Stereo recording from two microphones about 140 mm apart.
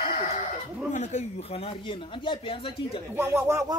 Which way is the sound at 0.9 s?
55° left (ahead or behind).